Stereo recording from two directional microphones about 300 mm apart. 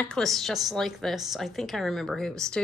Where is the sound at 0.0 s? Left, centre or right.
Centre.